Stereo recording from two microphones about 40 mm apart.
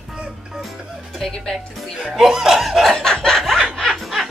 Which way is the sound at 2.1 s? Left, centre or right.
Centre.